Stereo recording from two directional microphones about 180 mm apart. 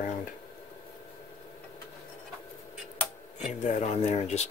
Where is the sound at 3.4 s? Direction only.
40° left (ahead or behind).